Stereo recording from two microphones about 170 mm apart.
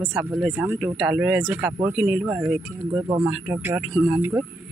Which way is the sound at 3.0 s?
20° right (ahead or behind).